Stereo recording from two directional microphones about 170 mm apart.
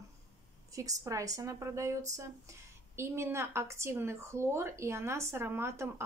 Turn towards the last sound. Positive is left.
turn(degrees=-15)  # may be behind; listen again after turning